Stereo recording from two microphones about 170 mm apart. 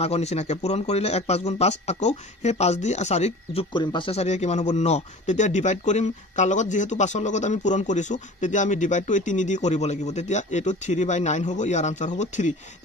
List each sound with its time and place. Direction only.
0.0 s speech: 40° left (ahead or behind)
3.7 s speech: 25° left (ahead or behind); by 12.5 s 45° left (ahead or behind)